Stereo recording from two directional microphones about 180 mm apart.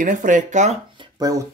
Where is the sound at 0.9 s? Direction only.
20° right (ahead or behind).